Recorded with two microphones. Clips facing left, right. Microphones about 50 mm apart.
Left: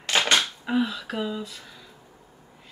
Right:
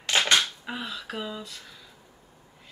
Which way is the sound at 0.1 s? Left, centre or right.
Centre.